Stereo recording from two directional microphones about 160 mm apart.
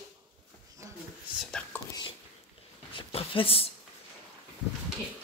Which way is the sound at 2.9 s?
35° left (ahead or behind).